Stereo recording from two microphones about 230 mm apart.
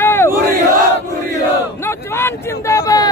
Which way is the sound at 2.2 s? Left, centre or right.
Centre.